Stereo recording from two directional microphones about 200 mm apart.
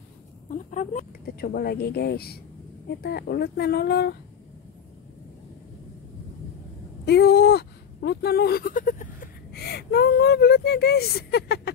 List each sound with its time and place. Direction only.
0.5 s speech: 40° left (ahead or behind); by 4.1 s 55° left (ahead or behind)
7.1 s bleat: 55° left (ahead or behind)